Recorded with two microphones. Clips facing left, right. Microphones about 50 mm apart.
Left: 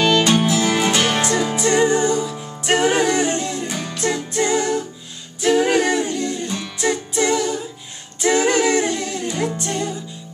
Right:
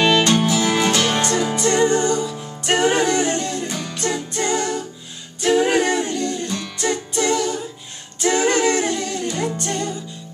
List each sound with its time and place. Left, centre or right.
0.2 s music: centre
1.1 s music: centre